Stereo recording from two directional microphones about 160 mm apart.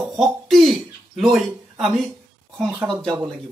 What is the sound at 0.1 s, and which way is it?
Cough, centre (ahead or behind).